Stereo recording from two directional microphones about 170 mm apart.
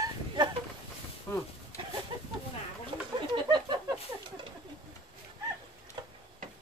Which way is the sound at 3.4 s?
25° right (ahead or behind).